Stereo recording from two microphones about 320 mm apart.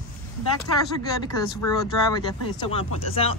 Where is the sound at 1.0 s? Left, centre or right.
Centre.